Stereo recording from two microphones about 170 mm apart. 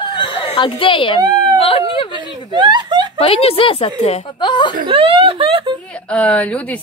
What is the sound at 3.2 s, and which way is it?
Chuckle, 35° left (ahead or behind).